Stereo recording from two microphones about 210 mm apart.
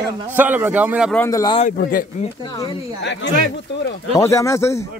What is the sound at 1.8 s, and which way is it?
Speech, 45° left (ahead or behind).